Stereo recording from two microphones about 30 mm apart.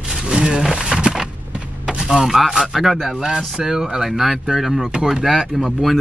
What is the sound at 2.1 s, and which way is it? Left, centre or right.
Speech, centre.